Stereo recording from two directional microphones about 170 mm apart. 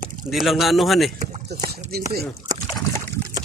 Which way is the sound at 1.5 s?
75° right (ahead or behind).